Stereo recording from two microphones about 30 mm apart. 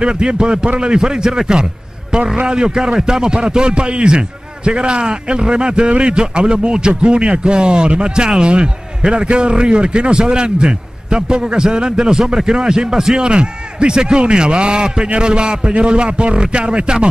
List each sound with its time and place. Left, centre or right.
0.0 s a man's voice: right